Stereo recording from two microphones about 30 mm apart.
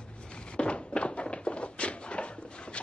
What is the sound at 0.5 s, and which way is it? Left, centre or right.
Thunk, left.